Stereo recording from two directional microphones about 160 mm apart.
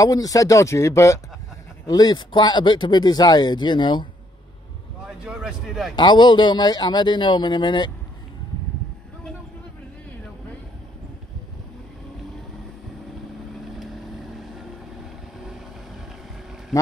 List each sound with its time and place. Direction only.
0.0 s speech: 20° left (ahead or behind)
5.2 s speech: 5° right (ahead or behind)
5.9 s speech: 30° left (ahead or behind)
13.7 s vehicle: centre (ahead or behind)